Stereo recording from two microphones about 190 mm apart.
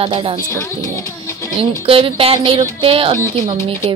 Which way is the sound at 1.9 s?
30° right (ahead or behind).